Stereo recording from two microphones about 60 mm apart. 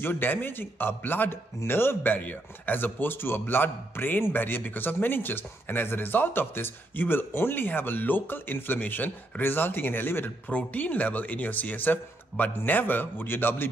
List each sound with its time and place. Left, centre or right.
0.0 s speech: left